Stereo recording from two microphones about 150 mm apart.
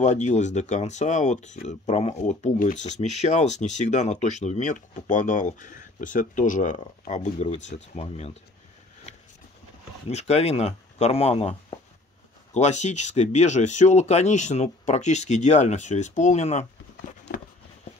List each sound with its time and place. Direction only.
0.0 s speech: 50° left (ahead or behind)
10.0 s speech: 45° left (ahead or behind)
12.5 s speech: 50° left (ahead or behind)
17.3 s a sound: 80° left